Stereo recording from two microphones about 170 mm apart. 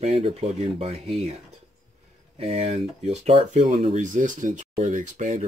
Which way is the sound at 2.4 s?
40° right (ahead or behind).